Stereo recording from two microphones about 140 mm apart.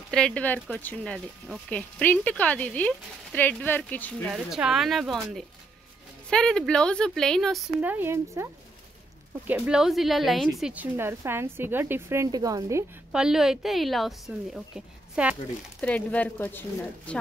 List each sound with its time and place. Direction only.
0.1 s speech: 5° left (ahead or behind)
4.3 s a woman's voice: 5° right (ahead or behind)
7.8 s a woman's voice: 15° right (ahead or behind)
9.5 s a woman's voice: 5° right (ahead or behind)
10.6 s a woman's voice: 10° right (ahead or behind)
13.1 s a woman's voice: 5° right (ahead or behind)
15.8 s speech: 10° left (ahead or behind)